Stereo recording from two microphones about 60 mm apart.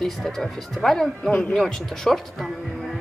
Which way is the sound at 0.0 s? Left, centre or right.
Centre.